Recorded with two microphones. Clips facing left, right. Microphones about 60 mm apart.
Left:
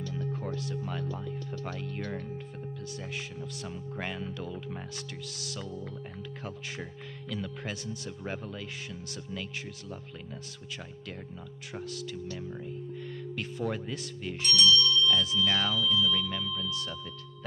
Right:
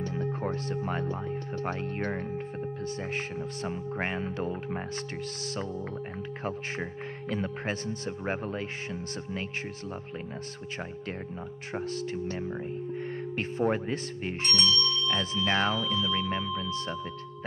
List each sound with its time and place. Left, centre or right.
0.0 s speech: right
6.4 s speech: right
11.7 s speech: right